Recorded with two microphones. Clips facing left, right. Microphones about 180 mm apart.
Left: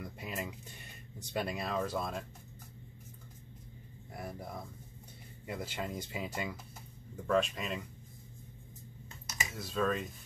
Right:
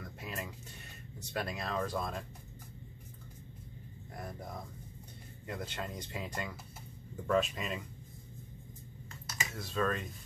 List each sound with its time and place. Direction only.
0.0 s music: 15° left (ahead or behind)
1.3 s speech: 10° left (ahead or behind)
4.1 s speech: 5° left (ahead or behind)
5.5 s speech: 5° left (ahead or behind)
9.1 s finger snapping: 20° left (ahead or behind)
9.5 s speech: centre (ahead or behind)